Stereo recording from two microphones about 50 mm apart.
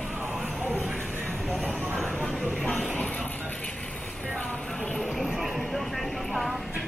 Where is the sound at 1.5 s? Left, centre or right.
Centre.